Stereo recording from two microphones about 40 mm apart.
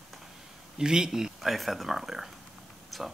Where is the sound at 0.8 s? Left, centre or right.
Centre.